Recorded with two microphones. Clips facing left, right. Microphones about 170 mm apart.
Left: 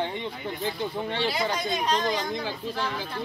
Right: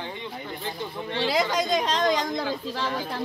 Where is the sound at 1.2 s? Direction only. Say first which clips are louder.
Right 8 dB; 90° right.